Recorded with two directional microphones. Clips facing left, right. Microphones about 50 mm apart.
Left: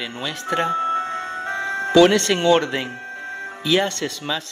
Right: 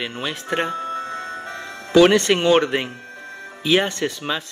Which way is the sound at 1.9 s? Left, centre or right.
Right.